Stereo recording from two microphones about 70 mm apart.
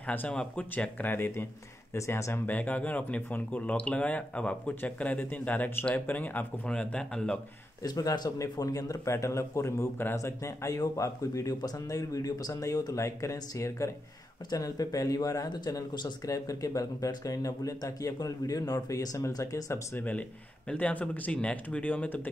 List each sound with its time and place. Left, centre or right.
0.0 s speech: left
2.0 s speech: left
2.4 s speech: left
6.7 s speech: centre
7.8 s speech: left
14.5 s speech: left
15.5 s speech: left
16.3 s speech: left
20.0 s speech: left